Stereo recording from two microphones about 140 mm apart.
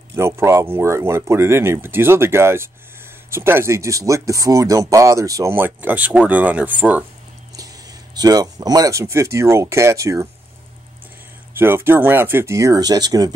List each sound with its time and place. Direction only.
0.1 s speech: 20° right (ahead or behind)
7.5 s speech: 25° right (ahead or behind)
11.5 s speech: 15° right (ahead or behind)